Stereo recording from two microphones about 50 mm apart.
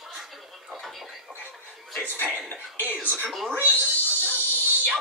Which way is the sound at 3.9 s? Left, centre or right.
Left.